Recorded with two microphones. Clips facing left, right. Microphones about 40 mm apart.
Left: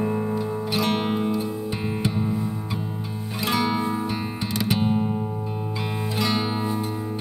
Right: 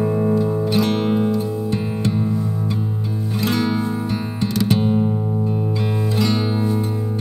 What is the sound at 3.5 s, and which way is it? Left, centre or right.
Music, centre.